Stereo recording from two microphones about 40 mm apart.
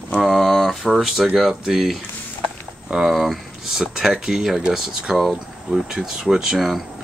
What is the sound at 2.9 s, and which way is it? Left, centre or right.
Speech, centre.